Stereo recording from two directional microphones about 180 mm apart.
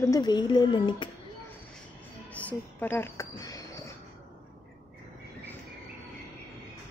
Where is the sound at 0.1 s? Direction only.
25° left (ahead or behind).